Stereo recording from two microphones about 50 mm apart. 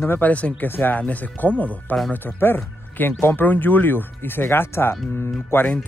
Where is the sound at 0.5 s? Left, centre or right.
Left.